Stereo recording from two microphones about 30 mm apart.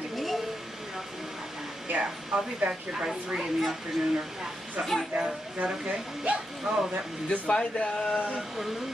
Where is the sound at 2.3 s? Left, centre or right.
Right.